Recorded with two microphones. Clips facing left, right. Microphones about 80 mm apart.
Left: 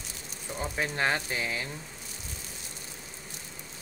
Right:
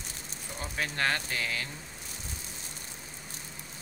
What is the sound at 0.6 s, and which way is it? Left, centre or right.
Speech, centre.